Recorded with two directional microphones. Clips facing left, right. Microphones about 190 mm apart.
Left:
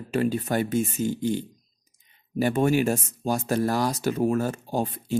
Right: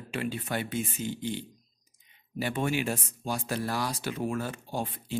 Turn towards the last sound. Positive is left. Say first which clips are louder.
# left 7 dB
turn(degrees=45)  # may be behind; listen again after turning